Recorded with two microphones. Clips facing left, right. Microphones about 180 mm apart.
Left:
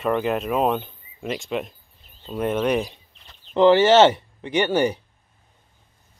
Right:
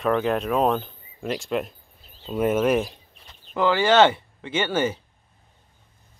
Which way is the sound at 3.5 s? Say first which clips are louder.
Left 4 dB; 20° left (ahead or behind).